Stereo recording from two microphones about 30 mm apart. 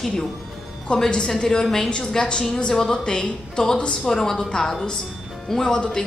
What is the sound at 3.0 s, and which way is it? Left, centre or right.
A woman's voice, left.